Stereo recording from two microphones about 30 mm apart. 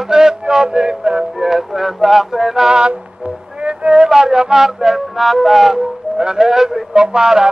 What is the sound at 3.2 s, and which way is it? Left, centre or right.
Music, right.